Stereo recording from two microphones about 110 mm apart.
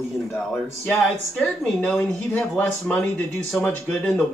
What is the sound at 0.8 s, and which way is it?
Speech, 15° left (ahead or behind).